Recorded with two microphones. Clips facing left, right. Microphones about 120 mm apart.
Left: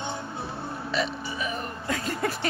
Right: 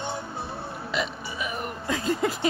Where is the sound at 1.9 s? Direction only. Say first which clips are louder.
Right 3 dB; 20° right (ahead or behind).